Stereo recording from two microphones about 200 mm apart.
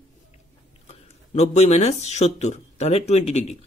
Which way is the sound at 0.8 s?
35° left (ahead or behind).